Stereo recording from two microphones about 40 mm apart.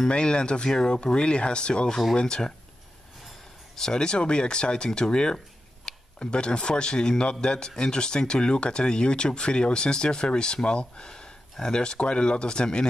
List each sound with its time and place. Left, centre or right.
0.1 s speech: left
3.7 s speech: centre